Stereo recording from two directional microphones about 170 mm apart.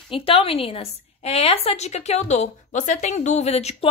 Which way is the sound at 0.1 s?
35° left (ahead or behind).